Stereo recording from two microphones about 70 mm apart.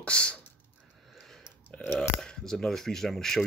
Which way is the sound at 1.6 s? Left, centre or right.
Left.